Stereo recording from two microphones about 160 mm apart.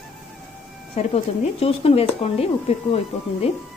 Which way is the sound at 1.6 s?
35° left (ahead or behind).